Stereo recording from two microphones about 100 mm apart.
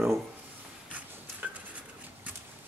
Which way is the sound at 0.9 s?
15° right (ahead or behind).